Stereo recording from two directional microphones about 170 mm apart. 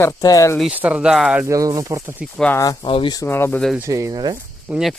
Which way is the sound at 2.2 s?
5° left (ahead or behind).